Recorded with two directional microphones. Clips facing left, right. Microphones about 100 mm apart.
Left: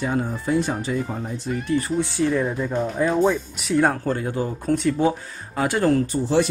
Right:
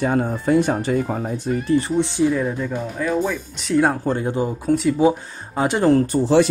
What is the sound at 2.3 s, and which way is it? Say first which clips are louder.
Speech: right 1 dB; centre (ahead or behind).